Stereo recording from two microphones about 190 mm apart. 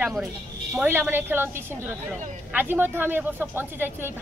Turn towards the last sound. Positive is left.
turn(degrees=-10)  # may be behind; listen again after turning